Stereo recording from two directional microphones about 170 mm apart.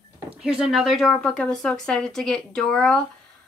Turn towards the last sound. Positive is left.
turn(degrees=5)  # may be behind; listen again after turning